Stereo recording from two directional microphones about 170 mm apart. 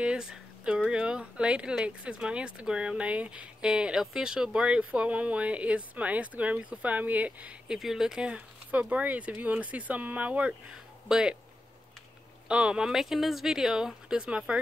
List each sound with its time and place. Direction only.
0.0 s speech: 5° right (ahead or behind)
12.4 s speech: 5° right (ahead or behind)